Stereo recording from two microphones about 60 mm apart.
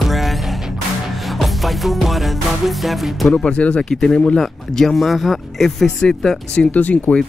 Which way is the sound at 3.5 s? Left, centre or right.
Left.